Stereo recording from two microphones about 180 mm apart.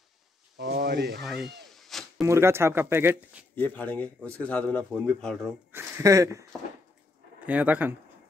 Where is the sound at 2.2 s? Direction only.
15° right (ahead or behind).